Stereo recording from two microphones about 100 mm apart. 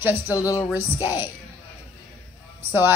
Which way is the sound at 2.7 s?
20° right (ahead or behind).